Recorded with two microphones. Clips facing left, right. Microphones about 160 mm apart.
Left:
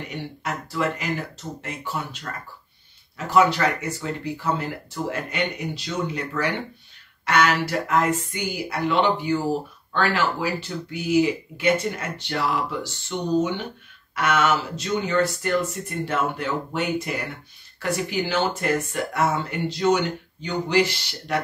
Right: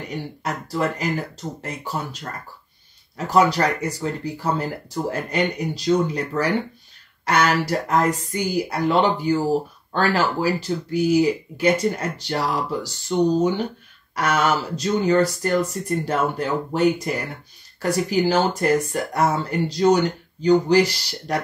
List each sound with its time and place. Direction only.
0.1 s speech: 35° right (ahead or behind)
3.3 s speech: 40° right (ahead or behind)